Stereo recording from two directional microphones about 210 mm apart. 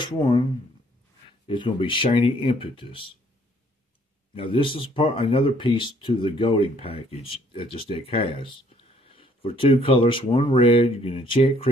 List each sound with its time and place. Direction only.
0.0 s speech: 20° left (ahead or behind)
1.5 s speech: 20° left (ahead or behind)
4.4 s speech: 25° left (ahead or behind)